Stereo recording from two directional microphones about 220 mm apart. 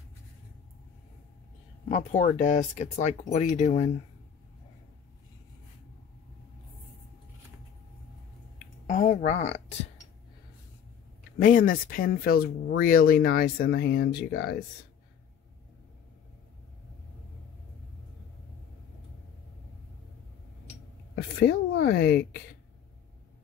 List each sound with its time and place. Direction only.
1.9 s speech: 35° left (ahead or behind)
8.8 s speech: 35° left (ahead or behind)
11.3 s speech: 40° left (ahead or behind)
21.1 s a woman's voice: 50° left (ahead or behind)